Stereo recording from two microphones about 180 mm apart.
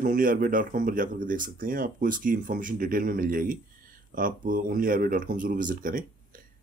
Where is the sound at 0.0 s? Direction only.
50° right (ahead or behind).